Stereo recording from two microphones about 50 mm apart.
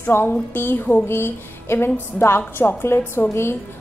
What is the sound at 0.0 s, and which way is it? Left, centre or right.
Speech, left.